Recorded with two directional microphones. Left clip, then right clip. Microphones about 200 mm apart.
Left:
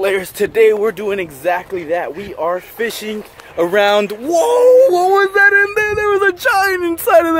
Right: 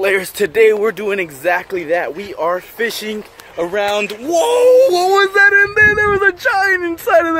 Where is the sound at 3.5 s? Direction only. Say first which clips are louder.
Left 5 dB; 50° left (ahead or behind).